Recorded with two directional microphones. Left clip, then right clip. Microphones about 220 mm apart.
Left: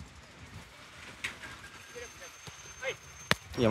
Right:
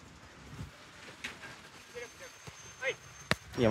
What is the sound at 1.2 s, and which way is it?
Train, 30° left (ahead or behind).